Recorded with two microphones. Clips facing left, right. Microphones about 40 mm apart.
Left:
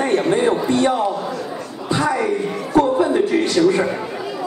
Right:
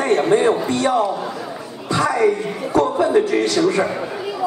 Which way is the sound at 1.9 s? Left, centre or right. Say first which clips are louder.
Even; centre.